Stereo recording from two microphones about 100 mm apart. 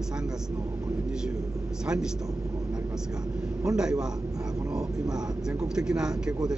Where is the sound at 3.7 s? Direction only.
5° right (ahead or behind).